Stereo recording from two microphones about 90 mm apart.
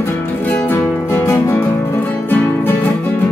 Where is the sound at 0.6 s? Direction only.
25° left (ahead or behind).